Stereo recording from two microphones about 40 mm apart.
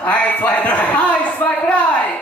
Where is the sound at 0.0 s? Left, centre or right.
Left.